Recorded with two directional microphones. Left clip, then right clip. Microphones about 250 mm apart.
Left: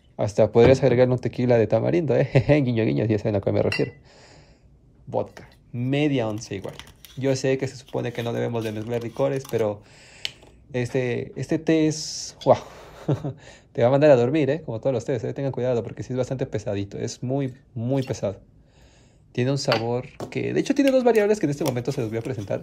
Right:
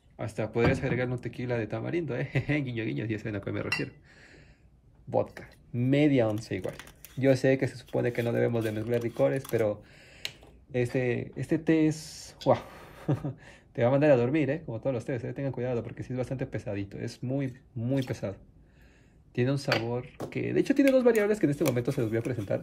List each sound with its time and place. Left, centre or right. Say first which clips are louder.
0.2 s speech: left 12 dB; centre
5.1 s speech: left 2 dB; centre
19.3 s speech: left 5 dB; centre